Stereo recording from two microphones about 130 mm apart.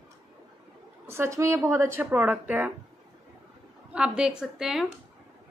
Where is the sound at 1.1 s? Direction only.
20° right (ahead or behind).